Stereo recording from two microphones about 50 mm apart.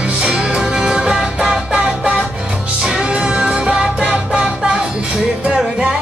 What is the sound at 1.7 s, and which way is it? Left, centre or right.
Music, right.